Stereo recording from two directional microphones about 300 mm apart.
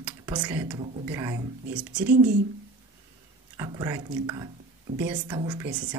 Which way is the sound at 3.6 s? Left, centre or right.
Centre.